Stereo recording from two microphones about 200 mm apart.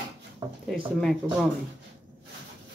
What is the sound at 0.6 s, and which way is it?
Speech, centre (ahead or behind).